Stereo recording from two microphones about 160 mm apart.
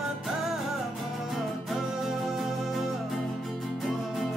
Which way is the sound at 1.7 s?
Centre (ahead or behind).